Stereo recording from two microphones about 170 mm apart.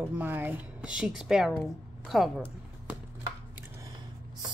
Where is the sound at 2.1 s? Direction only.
Centre (ahead or behind).